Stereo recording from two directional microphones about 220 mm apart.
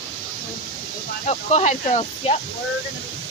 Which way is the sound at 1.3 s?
30° left (ahead or behind).